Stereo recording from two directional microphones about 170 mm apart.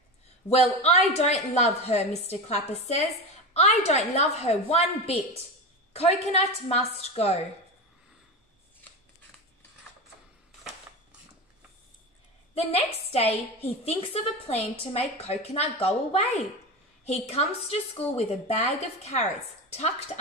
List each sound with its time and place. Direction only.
0.5 s a woman's voice: 40° left (ahead or behind)
12.5 s a woman's voice: 35° left (ahead or behind)